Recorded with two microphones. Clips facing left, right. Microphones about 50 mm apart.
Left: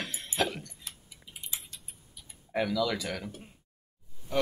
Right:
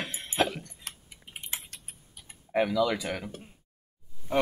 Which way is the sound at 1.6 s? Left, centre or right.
Right.